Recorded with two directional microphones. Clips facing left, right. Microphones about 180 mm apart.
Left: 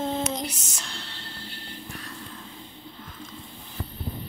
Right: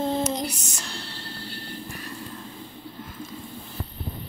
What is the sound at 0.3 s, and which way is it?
Music, centre (ahead or behind).